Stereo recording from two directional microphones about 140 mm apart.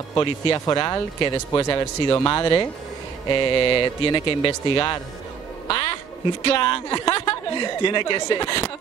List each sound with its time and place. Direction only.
0.1 s a woman's voice: 30° left (ahead or behind)
5.7 s quack: 40° left (ahead or behind)
6.4 s a woman's voice: 35° left (ahead or behind)